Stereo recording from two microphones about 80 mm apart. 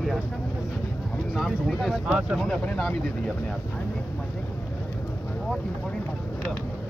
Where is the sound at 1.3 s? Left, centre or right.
Centre.